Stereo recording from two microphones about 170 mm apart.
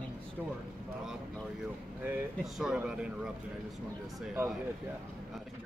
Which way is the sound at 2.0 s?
10° right (ahead or behind).